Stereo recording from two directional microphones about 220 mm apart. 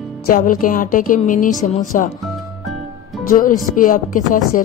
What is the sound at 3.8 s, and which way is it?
Speech, 40° left (ahead or behind).